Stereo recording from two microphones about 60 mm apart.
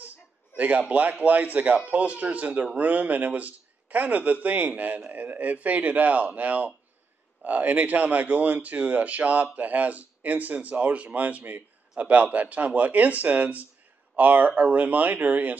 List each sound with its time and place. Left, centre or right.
0.6 s speech: right